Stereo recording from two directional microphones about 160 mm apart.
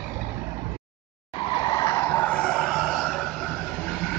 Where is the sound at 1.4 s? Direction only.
30° left (ahead or behind); by 3.2 s 5° left (ahead or behind).